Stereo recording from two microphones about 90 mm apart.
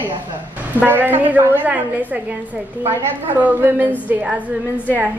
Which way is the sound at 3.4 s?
20° right (ahead or behind).